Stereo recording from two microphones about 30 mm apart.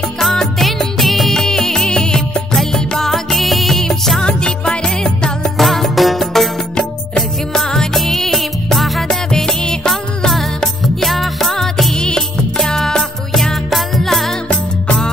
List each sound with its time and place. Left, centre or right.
0.2 s music: centre
0.6 s music of bollywood: centre
1.3 s music: centre
2.5 s music: centre
4.2 s music: left
5.4 s music: centre
7.2 s music: centre
9.5 s music: left
11.1 s music: centre
11.9 s music: left
13.3 s music: centre
13.7 s music: centre